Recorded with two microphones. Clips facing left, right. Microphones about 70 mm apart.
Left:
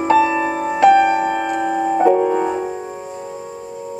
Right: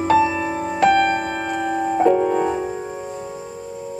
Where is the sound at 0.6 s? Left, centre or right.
Centre.